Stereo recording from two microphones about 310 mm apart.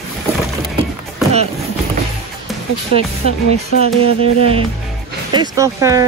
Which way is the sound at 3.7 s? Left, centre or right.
Left.